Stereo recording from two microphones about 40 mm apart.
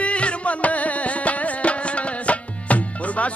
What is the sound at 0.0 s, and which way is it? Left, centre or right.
Music, left.